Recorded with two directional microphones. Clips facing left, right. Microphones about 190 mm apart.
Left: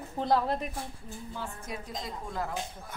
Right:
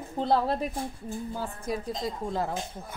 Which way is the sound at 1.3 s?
40° right (ahead or behind).